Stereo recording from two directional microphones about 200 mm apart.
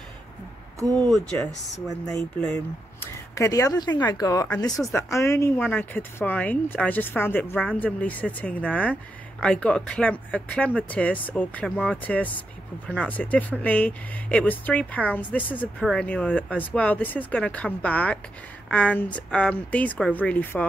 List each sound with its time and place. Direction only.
0.7 s speech: 15° right (ahead or behind)
3.0 s speech: 15° left (ahead or behind)